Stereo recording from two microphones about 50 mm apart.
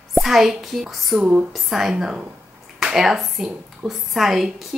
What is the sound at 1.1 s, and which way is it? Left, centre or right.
Speech, right.